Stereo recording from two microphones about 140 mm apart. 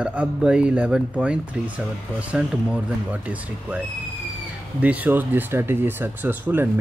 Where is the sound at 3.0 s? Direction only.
10° right (ahead or behind).